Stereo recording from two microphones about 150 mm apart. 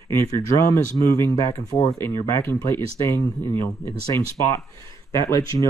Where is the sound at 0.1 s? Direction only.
15° left (ahead or behind).